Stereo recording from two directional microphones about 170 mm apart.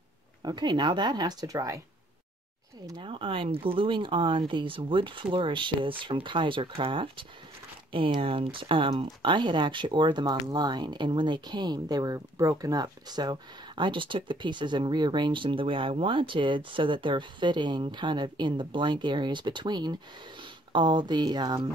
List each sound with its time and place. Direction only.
0.4 s speech: 25° right (ahead or behind)
2.9 s speech: 30° right (ahead or behind)